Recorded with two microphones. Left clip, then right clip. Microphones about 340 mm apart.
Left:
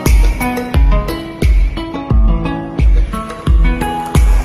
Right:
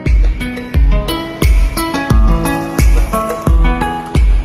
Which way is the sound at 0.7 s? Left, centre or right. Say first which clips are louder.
Even; centre.